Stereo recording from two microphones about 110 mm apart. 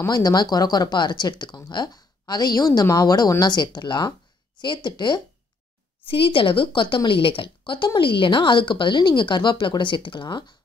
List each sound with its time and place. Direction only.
0.1 s a woman's voice: 40° left (ahead or behind)
6.0 s a woman's voice: 55° left (ahead or behind)